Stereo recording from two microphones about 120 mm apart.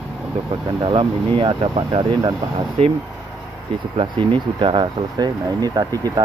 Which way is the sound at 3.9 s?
45° right (ahead or behind).